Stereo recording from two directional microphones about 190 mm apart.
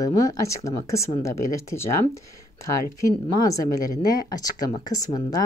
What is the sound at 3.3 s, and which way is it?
Speech, 20° left (ahead or behind).